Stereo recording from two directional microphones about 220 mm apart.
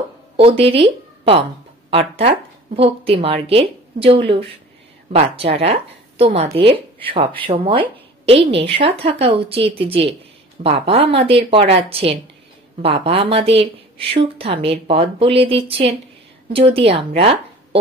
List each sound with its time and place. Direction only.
0.4 s speech: 25° right (ahead or behind)
1.9 s speech: 25° right (ahead or behind)